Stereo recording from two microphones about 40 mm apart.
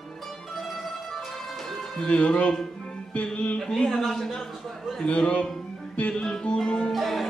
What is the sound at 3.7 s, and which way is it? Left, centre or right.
Speech, centre.